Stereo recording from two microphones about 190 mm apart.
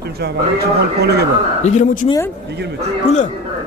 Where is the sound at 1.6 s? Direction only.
40° left (ahead or behind).